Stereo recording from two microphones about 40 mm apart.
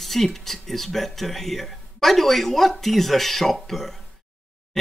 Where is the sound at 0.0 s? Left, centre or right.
Centre.